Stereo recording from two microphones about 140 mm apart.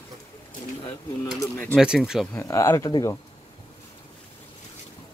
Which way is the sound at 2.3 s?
20° left (ahead or behind).